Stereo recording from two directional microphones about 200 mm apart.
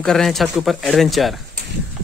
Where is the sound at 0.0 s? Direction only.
Centre (ahead or behind).